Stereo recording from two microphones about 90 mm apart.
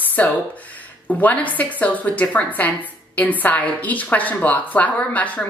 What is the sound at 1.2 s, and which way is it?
A woman's voice, 20° left (ahead or behind).